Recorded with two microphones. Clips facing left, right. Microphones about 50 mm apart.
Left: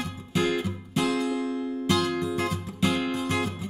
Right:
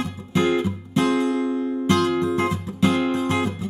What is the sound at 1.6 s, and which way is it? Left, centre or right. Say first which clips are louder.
Music: right 5 dB; centre.